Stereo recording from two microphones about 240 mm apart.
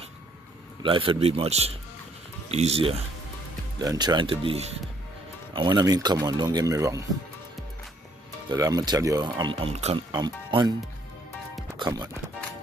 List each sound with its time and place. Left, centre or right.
0.8 s speech: right
8.5 s speech: centre
11.8 s speech: centre